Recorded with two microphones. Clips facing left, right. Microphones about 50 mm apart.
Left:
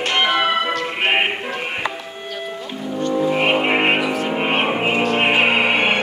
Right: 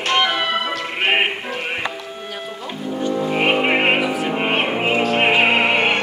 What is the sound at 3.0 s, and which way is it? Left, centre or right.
Frog, centre.